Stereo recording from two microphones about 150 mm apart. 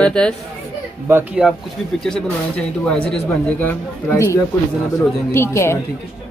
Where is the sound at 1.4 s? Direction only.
5° right (ahead or behind).